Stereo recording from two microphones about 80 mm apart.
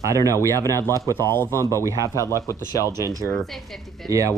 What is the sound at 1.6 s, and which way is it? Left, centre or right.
Speech, right.